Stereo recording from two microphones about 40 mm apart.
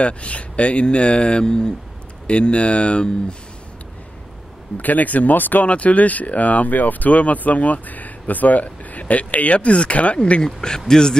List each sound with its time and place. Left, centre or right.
0.0 s speech: left
4.7 s speech: left
5.7 s speech: left
10.4 s a man's voice: centre